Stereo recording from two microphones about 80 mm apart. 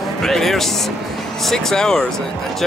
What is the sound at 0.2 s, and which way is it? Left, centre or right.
A man's voice, centre.